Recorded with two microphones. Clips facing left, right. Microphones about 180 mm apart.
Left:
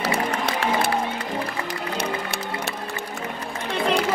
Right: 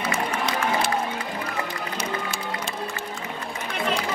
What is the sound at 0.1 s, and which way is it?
Music, 65° left (ahead or behind).